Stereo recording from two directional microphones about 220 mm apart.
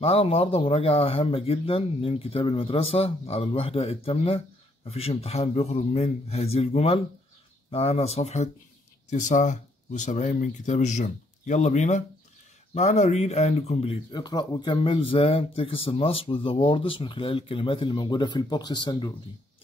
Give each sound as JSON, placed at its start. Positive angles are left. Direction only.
{"t": 0.0, "sound": "speech", "side_deg": 25}